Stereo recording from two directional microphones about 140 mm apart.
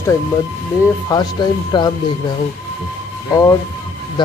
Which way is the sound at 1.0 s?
30° left (ahead or behind).